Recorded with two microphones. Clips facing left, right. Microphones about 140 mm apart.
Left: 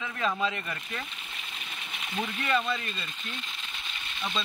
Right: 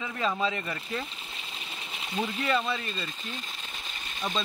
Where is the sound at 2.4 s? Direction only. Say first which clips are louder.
Left 1 dB; 30° right (ahead or behind).